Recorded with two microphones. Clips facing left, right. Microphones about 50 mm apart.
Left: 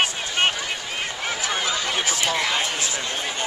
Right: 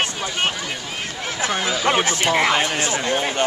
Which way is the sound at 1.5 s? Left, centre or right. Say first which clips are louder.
Right 6 dB; centre.